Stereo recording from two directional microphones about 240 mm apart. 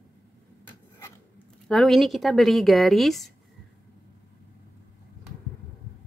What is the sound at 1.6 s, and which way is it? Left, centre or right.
Speech, centre.